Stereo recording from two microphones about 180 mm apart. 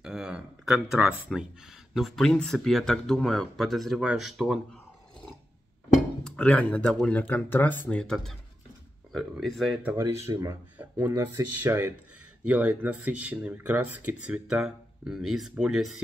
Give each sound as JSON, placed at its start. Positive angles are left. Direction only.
{"t": 0.0, "sound": "speech", "side_deg": -5}
{"t": 6.2, "sound": "speech", "side_deg": 5}
{"t": 9.9, "sound": "speech", "side_deg": -15}